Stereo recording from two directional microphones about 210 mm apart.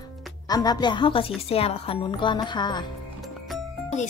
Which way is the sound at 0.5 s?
20° left (ahead or behind).